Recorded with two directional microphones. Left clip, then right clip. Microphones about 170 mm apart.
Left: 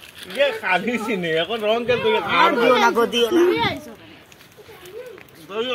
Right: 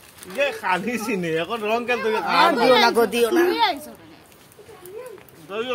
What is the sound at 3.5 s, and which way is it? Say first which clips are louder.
Speech: right 2 dB; 15° right (ahead or behind).